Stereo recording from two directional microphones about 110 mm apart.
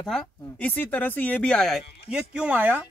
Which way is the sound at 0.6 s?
15° left (ahead or behind).